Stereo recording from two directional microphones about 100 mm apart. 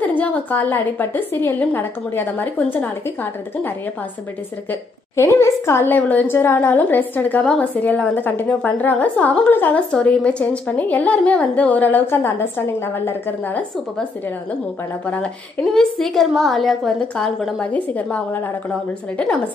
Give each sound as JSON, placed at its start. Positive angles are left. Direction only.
{"t": 0.0, "sound": "a woman's voice", "side_deg": 15}
{"t": 4.6, "sound": "a woman's voice", "side_deg": 25}
{"t": 15.7, "sound": "a woman's voice", "side_deg": 5}
{"t": 17.6, "sound": "a woman's voice", "side_deg": 15}